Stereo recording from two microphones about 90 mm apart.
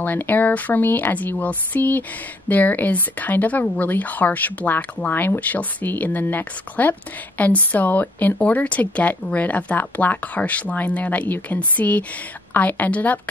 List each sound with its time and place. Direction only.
0.0 s speech: 20° left (ahead or behind)